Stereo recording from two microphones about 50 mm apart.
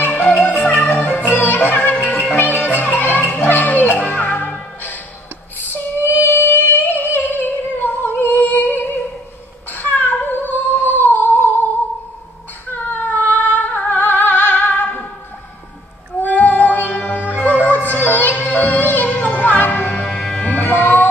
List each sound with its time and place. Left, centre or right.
0.0 s music: left
5.6 s female singing: left
12.7 s child singing: left
13.4 s music: left
16.2 s music: left
20.1 s music: centre
20.4 s music: left